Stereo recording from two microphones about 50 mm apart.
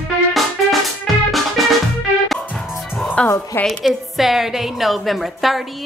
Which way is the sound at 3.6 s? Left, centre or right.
Centre.